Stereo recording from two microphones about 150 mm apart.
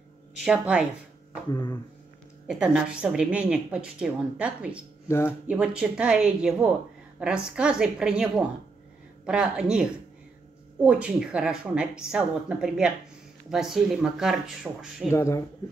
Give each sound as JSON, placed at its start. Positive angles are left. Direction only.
{"t": 0.5, "sound": "a woman's voice", "side_deg": -5}
{"t": 1.5, "sound": "speech", "side_deg": 25}
{"t": 2.4, "sound": "a woman's voice", "side_deg": -5}
{"t": 5.0, "sound": "speech", "side_deg": 15}
{"t": 5.5, "sound": "a woman's voice", "side_deg": -5}
{"t": 15.0, "sound": "speech", "side_deg": 20}